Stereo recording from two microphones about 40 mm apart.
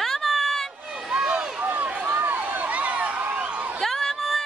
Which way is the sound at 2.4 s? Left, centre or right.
Right.